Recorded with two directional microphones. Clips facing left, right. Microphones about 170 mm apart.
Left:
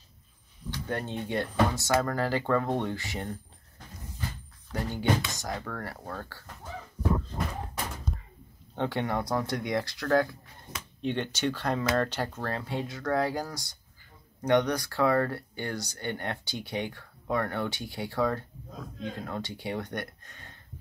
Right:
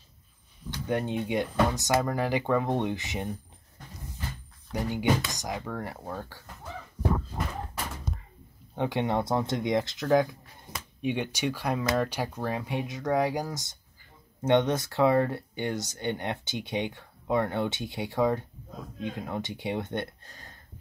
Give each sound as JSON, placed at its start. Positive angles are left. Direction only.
{"t": 0.8, "sound": "speech", "side_deg": -15}
{"t": 4.7, "sound": "speech", "side_deg": -15}
{"t": 8.7, "sound": "speech", "side_deg": -15}